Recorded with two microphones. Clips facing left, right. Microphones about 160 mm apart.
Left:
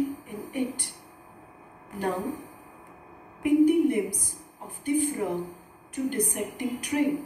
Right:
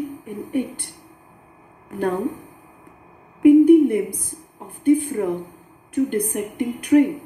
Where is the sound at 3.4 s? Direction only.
55° right (ahead or behind).